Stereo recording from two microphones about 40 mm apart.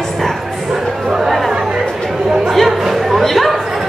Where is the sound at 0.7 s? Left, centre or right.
Centre.